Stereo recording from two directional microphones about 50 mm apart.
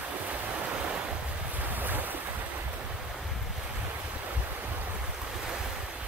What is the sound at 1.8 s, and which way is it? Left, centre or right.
Boat, right.